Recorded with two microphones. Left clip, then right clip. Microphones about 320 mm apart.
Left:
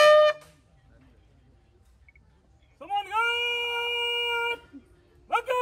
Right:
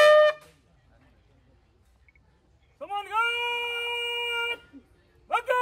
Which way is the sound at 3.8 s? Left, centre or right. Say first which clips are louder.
Left 2 dB; centre.